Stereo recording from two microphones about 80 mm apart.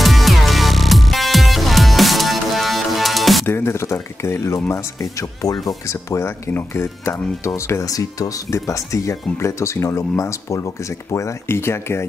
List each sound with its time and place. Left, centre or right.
0.0 s music: centre
3.4 s speech: left